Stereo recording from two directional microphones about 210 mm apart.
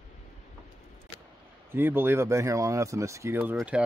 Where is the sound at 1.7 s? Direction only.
10° right (ahead or behind).